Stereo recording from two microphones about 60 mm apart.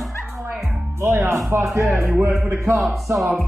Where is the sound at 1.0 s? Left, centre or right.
Right.